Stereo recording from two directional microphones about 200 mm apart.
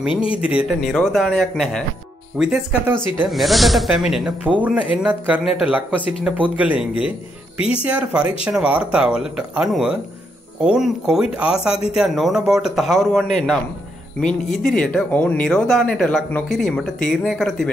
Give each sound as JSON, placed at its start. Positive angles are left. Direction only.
{"t": 0.1, "sound": "speech", "side_deg": 25}
{"t": 0.4, "sound": "speech", "side_deg": -5}